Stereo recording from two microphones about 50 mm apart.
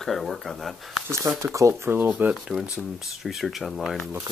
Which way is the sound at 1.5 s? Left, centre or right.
Right.